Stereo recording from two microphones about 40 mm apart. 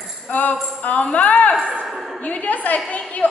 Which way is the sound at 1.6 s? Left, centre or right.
Right.